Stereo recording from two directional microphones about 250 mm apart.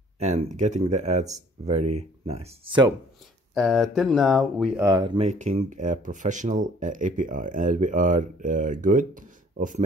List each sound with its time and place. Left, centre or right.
0.2 s speech: right
3.5 s speech: centre
4.8 s speech: centre